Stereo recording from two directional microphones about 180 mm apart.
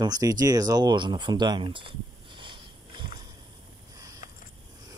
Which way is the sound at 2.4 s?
25° right (ahead or behind).